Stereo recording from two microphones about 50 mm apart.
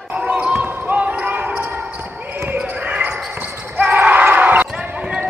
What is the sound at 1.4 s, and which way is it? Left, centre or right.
Basketball bounce, right.